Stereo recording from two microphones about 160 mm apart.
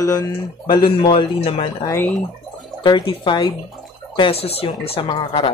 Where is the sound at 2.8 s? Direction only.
30° left (ahead or behind).